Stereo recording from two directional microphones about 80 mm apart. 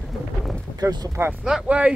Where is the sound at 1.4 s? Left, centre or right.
Centre.